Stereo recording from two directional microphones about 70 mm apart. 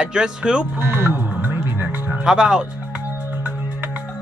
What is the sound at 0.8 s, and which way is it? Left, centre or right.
Speech, right.